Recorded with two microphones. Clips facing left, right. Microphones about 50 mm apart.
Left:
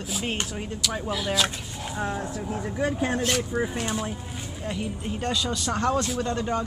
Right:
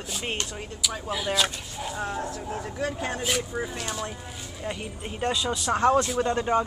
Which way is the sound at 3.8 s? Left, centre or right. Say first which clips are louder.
Left 4 dB; left.